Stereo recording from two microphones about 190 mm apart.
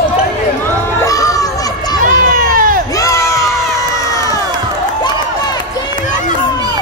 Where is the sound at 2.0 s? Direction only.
45° right (ahead or behind).